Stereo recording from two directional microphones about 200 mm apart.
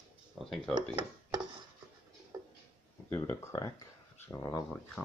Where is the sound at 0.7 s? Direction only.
20° right (ahead or behind).